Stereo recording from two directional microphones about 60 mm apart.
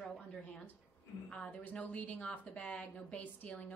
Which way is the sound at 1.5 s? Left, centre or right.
Left.